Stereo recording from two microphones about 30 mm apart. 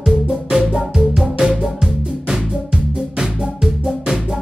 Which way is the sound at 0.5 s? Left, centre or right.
Centre.